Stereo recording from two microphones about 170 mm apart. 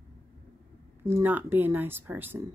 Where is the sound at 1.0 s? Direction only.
15° right (ahead or behind).